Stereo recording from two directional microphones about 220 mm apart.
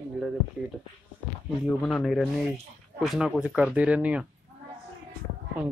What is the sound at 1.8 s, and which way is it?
Speech, centre (ahead or behind).